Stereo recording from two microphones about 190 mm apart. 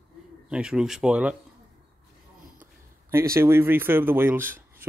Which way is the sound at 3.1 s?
15° right (ahead or behind).